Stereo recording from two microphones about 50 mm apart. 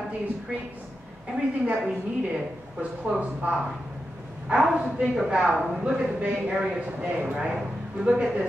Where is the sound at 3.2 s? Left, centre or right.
Right.